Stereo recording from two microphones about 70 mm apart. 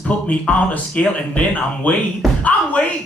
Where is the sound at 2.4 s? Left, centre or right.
Left.